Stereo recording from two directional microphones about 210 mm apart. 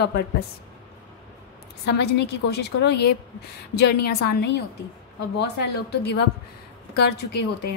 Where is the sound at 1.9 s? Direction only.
50° left (ahead or behind).